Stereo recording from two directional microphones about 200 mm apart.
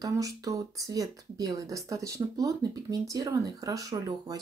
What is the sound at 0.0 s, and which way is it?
Speech, 15° right (ahead or behind).